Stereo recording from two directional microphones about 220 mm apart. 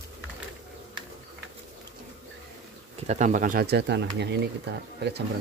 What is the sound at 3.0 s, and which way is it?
Speech, 30° right (ahead or behind).